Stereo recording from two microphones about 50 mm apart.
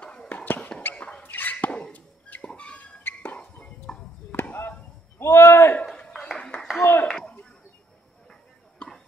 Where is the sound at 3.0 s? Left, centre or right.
Left.